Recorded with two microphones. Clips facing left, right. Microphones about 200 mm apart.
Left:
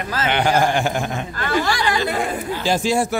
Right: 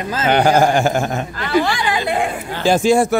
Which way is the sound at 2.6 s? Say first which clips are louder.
Right 7 dB; 50° right (ahead or behind).